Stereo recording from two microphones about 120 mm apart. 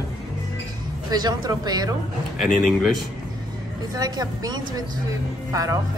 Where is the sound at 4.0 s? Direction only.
30° right (ahead or behind).